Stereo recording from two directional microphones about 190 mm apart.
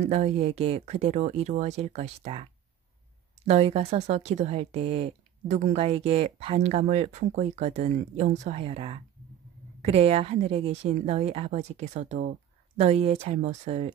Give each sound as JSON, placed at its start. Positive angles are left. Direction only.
{"t": 0.0, "sound": "speech", "side_deg": -35}
{"t": 3.4, "sound": "speech", "side_deg": -35}